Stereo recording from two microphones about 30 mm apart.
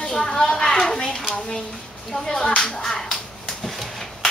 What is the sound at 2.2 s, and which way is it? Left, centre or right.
Speech, left.